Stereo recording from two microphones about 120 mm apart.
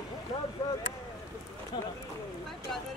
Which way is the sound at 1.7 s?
40° left (ahead or behind).